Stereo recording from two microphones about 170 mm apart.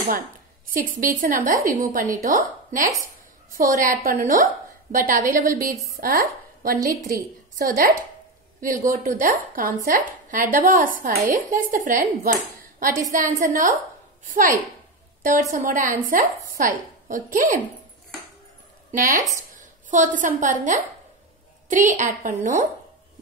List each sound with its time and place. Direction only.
1.0 s a woman's voice: 55° right (ahead or behind)
18.9 s speech: 50° right (ahead or behind)